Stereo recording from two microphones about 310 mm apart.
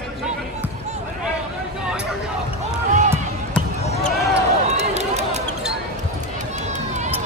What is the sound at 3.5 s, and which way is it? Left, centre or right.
Basketball bounce, left.